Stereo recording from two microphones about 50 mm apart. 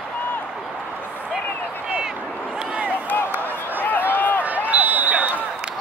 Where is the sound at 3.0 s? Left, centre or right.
Left.